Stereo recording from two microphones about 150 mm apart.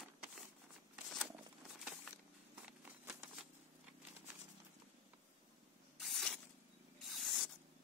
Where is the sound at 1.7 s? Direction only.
Centre (ahead or behind).